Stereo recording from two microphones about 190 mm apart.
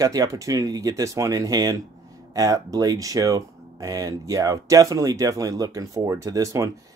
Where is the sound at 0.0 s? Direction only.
20° right (ahead or behind).